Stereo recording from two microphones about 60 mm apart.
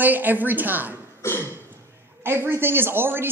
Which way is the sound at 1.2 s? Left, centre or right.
Left.